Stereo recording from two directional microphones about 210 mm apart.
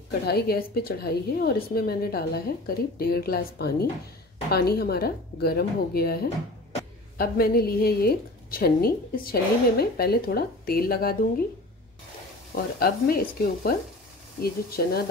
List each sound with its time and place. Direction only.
0.2 s a woman's voice: 50° left (ahead or behind)
7.2 s a woman's voice: 45° left (ahead or behind)
12.5 s a woman's voice: 45° left (ahead or behind)